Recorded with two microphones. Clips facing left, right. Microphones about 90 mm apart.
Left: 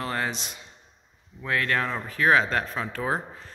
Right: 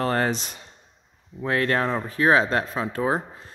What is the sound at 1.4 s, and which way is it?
Speech, 30° right (ahead or behind).